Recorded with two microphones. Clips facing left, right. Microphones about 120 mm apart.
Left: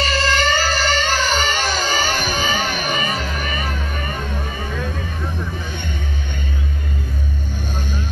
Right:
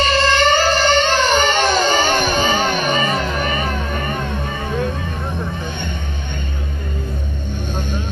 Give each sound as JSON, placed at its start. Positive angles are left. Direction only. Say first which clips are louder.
{"t": 0.0, "sound": "music", "louder": "right 4 dB", "side_deg": -25}
{"t": 2.2, "sound": "music", "louder": "right 4 dB", "side_deg": -55}
{"t": 2.9, "sound": "music", "louder": "right 4 dB", "side_deg": -35}
{"t": 3.3, "sound": "vehicle", "louder": "right 5 dB", "side_deg": -30}